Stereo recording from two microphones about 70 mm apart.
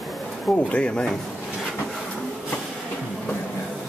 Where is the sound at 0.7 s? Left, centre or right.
Centre.